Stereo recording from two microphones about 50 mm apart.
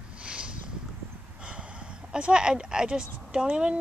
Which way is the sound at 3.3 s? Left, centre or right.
Centre.